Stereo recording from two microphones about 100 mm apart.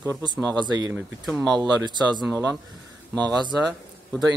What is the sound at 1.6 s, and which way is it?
Speech, 45° right (ahead or behind).